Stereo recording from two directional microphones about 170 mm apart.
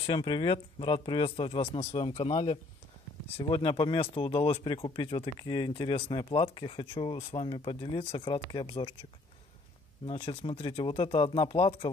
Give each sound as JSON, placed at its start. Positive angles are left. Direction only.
{"t": 0.0, "sound": "speech", "side_deg": 30}
{"t": 10.0, "sound": "speech", "side_deg": 35}